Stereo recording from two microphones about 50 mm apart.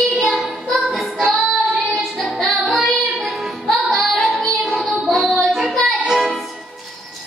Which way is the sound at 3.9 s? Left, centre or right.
Centre.